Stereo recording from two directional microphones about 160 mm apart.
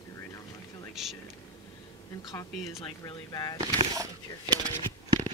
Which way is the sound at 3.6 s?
20° right (ahead or behind).